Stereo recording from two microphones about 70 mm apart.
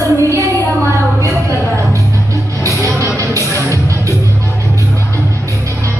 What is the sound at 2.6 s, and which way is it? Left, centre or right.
Music, right.